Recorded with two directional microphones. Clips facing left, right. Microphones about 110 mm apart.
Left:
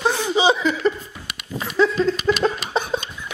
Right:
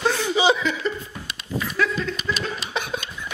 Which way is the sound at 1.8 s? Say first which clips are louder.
Left 6 dB; 25° left (ahead or behind).